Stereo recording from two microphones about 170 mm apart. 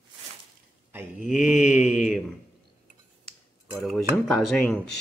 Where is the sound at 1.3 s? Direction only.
5° right (ahead or behind).